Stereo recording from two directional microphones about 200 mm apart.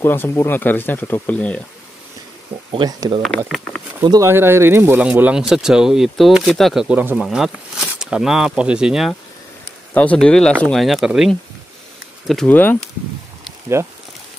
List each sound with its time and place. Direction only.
0.0 s speech: 10° left (ahead or behind)
2.7 s speech: 20° right (ahead or behind)
3.2 s speech: centre (ahead or behind)
4.0 s speech: 15° right (ahead or behind); by 12.7 s 10° left (ahead or behind)
13.8 s speech: 15° right (ahead or behind)